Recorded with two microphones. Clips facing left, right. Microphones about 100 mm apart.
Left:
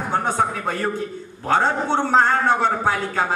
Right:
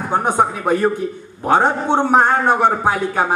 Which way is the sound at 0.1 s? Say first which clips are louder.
Right 5 dB; 15° right (ahead or behind).